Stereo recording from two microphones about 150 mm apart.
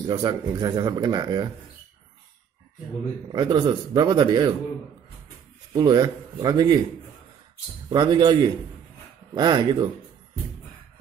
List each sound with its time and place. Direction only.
0.1 s speech: 30° right (ahead or behind)
3.3 s speech: 30° right (ahead or behind)
5.7 s speech: 30° right (ahead or behind)
7.9 s speech: 30° right (ahead or behind)